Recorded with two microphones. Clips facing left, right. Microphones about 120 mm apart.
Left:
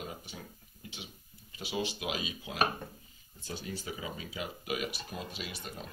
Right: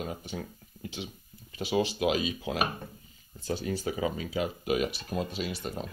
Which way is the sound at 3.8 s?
60° right (ahead or behind).